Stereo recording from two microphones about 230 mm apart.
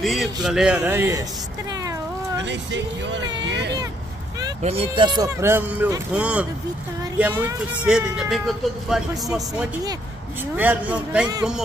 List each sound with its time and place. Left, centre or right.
0.0 s speech: centre
2.4 s speech: right
4.6 s speech: right; by 11.2 s centre